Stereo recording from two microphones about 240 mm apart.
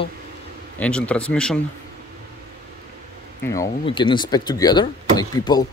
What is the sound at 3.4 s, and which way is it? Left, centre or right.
Speech, centre.